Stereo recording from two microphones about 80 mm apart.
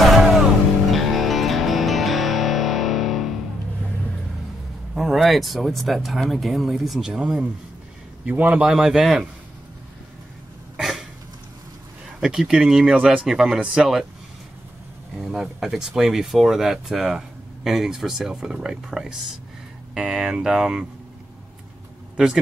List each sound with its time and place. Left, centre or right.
0.0 s music: centre
4.9 s speech: centre
8.3 s speech: centre
10.8 s a sound: centre
12.2 s speech: centre
15.2 s speech: centre
22.1 s speech: centre